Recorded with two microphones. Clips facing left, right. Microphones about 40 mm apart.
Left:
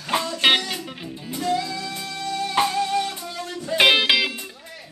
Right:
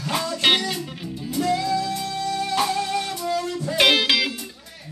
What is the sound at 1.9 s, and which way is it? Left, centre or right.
Music, centre.